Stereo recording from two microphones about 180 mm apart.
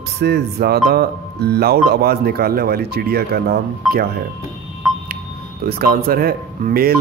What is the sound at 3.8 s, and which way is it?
Speech, centre (ahead or behind).